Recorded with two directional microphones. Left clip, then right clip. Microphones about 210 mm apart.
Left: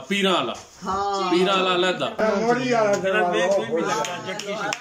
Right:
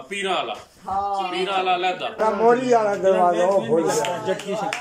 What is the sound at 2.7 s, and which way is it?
Speech, 25° right (ahead or behind).